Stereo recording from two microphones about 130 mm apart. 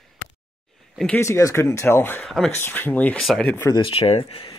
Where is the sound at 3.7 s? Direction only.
45° left (ahead or behind).